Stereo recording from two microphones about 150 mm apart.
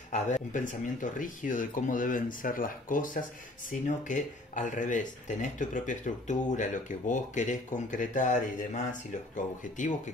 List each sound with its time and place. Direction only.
0.1 s speech: 55° left (ahead or behind)